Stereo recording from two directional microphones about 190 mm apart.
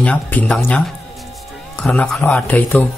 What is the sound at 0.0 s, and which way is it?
Speech, 5° left (ahead or behind).